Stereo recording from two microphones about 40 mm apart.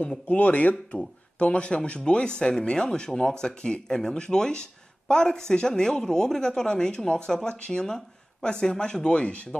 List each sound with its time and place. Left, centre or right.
0.3 s speech: left
0.9 s speech: left